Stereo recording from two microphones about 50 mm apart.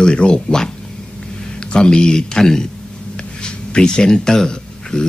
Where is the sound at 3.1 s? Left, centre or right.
Centre.